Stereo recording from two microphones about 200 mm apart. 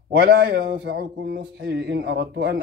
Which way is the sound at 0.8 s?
55° right (ahead or behind).